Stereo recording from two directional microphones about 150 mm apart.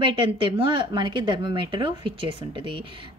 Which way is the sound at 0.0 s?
35° right (ahead or behind).